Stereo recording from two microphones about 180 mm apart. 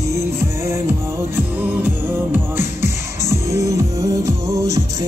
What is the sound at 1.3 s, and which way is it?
Music, 10° right (ahead or behind).